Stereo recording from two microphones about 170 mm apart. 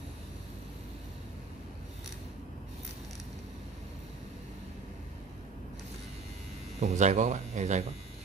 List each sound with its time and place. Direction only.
6.8 s speech: 45° right (ahead or behind)